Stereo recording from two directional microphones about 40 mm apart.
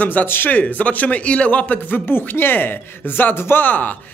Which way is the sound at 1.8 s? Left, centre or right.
Left.